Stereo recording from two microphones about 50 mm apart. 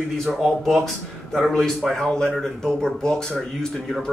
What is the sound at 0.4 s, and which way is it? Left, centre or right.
Speech, centre.